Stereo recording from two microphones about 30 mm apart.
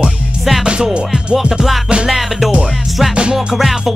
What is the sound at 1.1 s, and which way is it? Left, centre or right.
Music, centre.